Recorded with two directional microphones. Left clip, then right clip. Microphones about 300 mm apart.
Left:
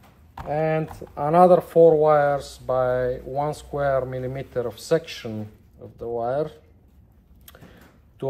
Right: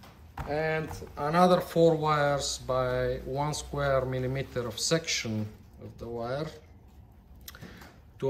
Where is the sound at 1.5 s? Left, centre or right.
Centre.